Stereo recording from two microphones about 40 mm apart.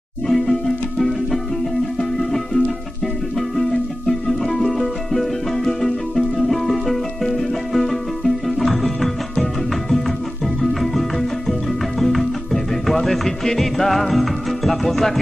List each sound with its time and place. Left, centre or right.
0.3 s music: centre
4.3 s music: centre
10.6 s music: centre